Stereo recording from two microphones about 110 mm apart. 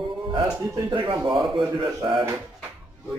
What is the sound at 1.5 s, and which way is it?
Speech, 50° right (ahead or behind).